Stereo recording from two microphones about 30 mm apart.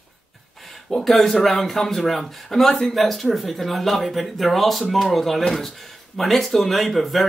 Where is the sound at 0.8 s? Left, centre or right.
Centre.